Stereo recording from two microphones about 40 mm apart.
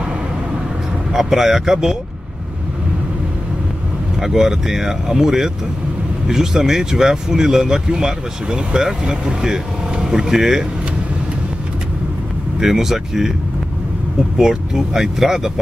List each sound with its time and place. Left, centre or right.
1.1 s speech: centre
4.2 s speech: centre
12.5 s speech: centre
14.3 s speech: centre